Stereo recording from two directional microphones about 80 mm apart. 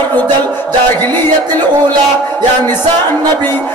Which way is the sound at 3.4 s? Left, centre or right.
Left.